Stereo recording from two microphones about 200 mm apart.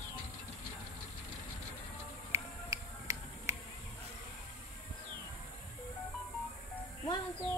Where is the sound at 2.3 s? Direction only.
15° right (ahead or behind).